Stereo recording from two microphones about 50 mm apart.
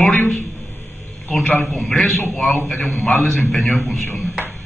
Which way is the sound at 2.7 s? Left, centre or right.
Left.